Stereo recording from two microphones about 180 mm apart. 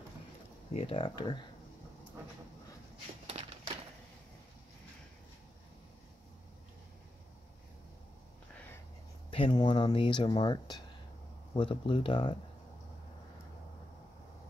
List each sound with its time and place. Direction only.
0.7 s speech: 30° left (ahead or behind)
3.3 s a sound: 30° right (ahead or behind)
9.3 s speech: 25° left (ahead or behind)